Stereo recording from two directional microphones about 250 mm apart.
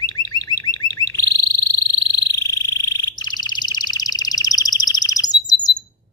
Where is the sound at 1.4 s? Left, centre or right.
Left.